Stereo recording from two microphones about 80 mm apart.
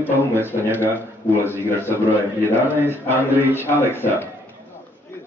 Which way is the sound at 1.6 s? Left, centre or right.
Left.